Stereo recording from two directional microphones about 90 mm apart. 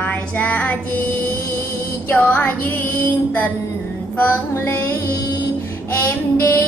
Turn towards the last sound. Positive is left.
turn(degrees=30)  # may be behind; listen again after turning